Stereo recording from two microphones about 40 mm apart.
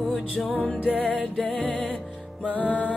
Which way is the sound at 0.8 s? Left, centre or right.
Left.